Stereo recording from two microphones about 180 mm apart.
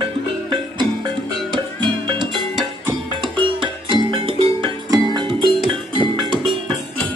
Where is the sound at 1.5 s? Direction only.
25° right (ahead or behind).